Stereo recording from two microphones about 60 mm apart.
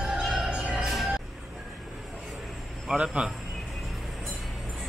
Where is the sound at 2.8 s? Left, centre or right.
Centre.